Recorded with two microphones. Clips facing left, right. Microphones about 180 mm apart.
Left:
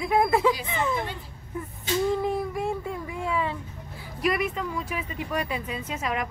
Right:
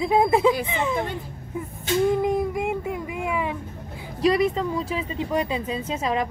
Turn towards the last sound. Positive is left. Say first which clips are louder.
# right 5 dB
turn(degrees=-30)  # may be behind; listen again after turning